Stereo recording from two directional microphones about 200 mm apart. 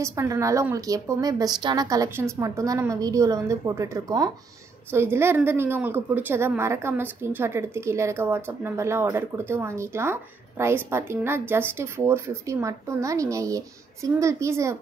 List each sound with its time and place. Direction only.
0.0 s a woman's voice: 15° right (ahead or behind)